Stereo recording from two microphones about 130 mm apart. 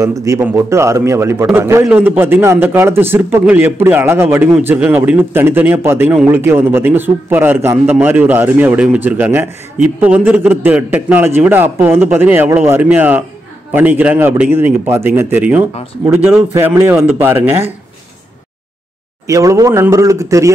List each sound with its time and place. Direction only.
0.0 s a man's voice: 25° right (ahead or behind)
19.2 s a man's voice: 25° right (ahead or behind)